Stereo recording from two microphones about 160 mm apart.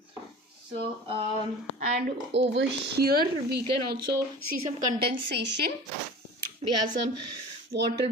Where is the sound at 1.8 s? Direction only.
65° right (ahead or behind); by 5.7 s 85° right.